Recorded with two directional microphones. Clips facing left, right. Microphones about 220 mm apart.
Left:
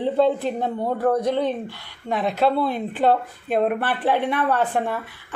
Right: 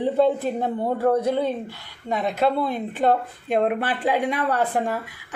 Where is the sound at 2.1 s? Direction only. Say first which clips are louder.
Left 1 dB; 5° left (ahead or behind).